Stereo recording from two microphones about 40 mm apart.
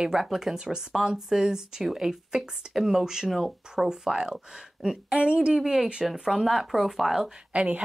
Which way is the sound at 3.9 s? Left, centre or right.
Centre.